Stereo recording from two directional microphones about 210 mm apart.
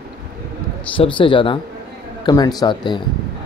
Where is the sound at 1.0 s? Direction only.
25° left (ahead or behind).